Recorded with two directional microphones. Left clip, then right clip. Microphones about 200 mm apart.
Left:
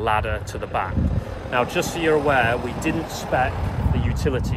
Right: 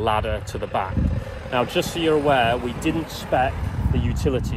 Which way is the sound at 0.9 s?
45° left (ahead or behind).